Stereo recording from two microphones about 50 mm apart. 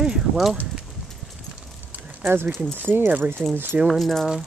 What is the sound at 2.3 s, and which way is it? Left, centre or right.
Speech, right.